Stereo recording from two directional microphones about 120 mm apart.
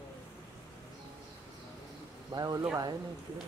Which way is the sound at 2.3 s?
35° right (ahead or behind).